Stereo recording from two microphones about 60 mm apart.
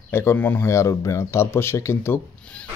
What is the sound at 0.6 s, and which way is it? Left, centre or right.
Speech, left.